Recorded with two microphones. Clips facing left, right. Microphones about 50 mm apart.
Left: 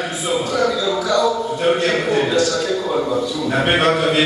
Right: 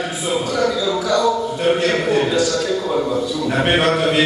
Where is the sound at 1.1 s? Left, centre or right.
Centre.